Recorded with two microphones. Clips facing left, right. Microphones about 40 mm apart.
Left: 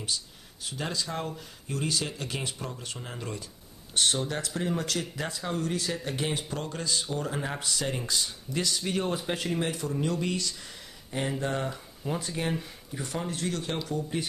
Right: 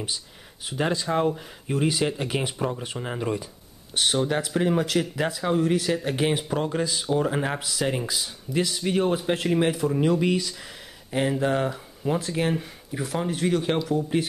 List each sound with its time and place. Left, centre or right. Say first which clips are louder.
0.7 s speech: right 8 dB; right
7.6 s speech: right 5 dB; centre
13.7 s speech: right 7 dB; centre